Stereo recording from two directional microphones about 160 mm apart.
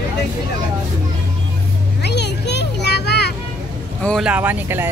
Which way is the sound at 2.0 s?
90° left.